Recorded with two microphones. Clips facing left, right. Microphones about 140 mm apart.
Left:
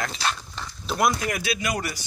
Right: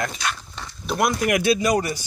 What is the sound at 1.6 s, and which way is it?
Speech, 30° right (ahead or behind).